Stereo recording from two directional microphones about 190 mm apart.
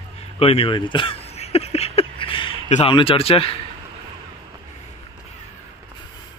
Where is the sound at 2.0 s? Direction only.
30° left (ahead or behind).